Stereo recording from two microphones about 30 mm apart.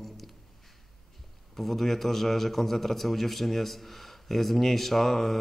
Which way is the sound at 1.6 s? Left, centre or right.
Centre.